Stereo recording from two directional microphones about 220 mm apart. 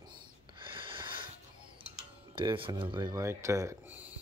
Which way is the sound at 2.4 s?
25° right (ahead or behind).